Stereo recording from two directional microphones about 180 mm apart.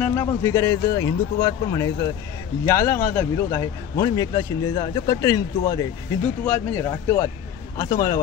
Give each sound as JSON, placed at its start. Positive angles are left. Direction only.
{"t": 0.0, "sound": "speech", "side_deg": 15}